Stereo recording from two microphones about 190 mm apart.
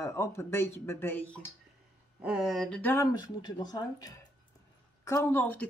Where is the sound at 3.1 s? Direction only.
20° left (ahead or behind).